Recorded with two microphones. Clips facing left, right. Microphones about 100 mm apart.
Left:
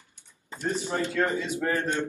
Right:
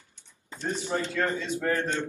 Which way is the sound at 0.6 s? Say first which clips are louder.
Left 1 dB; 10° left (ahead or behind).